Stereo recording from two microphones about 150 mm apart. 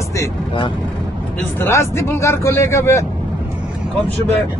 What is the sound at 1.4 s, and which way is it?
Speech, 15° left (ahead or behind).